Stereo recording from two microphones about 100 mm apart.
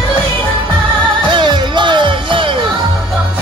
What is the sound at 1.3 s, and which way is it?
Music, 50° right (ahead or behind).